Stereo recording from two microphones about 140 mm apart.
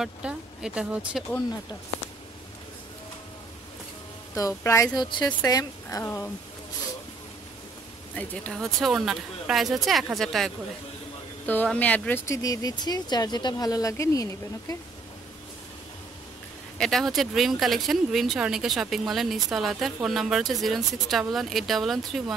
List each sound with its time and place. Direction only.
0.0 s speech: 5° right (ahead or behind)
4.4 s speech: 20° left (ahead or behind)
6.0 s speech: 15° left (ahead or behind)
8.2 s speech: 5° left (ahead or behind)
12.3 s speech: 25° left (ahead or behind)
16.7 s speech: 5° left (ahead or behind)